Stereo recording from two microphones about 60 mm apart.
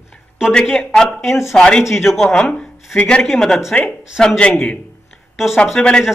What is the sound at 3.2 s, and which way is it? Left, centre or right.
A man's voice, centre.